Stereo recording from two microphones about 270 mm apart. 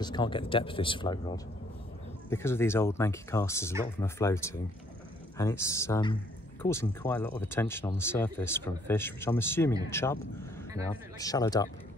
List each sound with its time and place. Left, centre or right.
0.0 s speech: centre
11.1 s speech: centre